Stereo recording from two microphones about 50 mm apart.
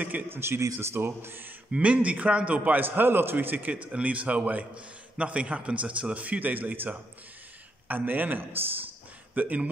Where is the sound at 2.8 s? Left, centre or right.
Right.